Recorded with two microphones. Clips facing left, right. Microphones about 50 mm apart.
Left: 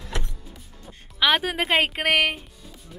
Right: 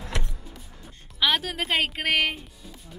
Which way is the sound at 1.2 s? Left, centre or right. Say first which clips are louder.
Left 3 dB; centre.